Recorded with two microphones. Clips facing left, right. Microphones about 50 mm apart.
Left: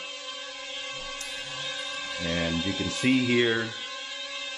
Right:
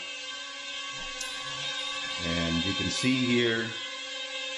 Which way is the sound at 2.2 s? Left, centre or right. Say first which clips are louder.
Left 1 dB; centre.